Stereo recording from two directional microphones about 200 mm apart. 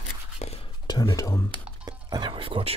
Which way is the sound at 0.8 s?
20° left (ahead or behind).